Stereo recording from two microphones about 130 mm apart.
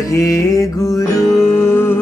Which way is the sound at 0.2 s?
25° left (ahead or behind).